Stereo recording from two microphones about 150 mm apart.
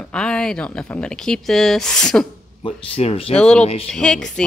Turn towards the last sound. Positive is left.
turn(degrees=5)  # may be behind; listen again after turning